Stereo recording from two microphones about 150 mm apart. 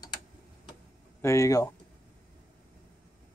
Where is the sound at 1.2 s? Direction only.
20° left (ahead or behind).